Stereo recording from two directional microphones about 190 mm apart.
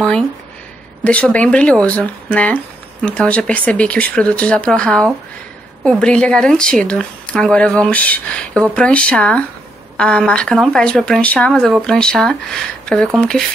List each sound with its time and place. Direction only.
1.0 s speech: 5° left (ahead or behind)